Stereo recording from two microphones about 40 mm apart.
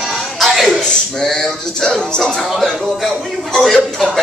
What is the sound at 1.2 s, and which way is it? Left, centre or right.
Male singing, centre.